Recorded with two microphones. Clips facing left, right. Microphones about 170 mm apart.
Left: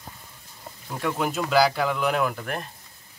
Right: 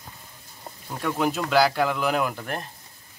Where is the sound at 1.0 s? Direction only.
Centre (ahead or behind).